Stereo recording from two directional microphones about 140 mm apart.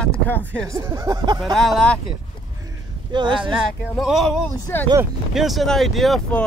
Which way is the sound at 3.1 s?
35° right (ahead or behind).